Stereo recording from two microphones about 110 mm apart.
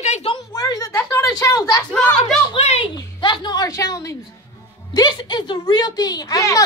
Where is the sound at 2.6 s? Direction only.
60° left (ahead or behind).